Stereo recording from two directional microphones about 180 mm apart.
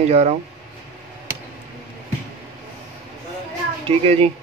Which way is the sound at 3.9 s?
35° right (ahead or behind).